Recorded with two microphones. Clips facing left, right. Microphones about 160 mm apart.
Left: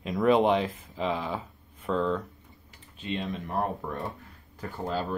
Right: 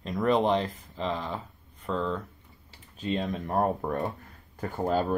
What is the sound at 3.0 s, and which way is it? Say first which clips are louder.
Speech: right 3 dB; 40° right (ahead or behind).